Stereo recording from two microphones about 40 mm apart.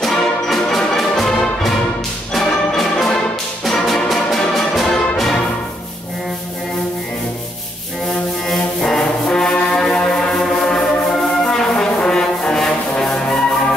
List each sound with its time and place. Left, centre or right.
0.0 s music: centre
2.3 s music: centre
8.8 s music: centre
10.4 s brass instrument: centre